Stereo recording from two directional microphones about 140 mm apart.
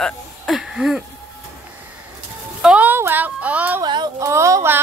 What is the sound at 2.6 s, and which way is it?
Speech, 10° right (ahead or behind).